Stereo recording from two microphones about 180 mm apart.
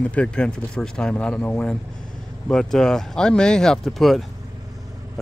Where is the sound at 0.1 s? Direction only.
5° left (ahead or behind).